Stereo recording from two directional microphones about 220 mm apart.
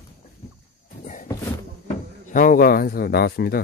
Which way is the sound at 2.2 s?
40° left (ahead or behind).